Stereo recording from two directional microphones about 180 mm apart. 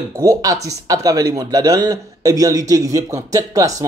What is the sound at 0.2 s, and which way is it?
Speech, 20° right (ahead or behind).